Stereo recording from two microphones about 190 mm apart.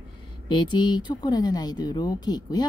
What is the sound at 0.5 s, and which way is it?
Speech, 25° left (ahead or behind).